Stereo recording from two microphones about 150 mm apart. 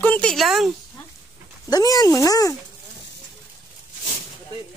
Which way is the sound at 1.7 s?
25° left (ahead or behind).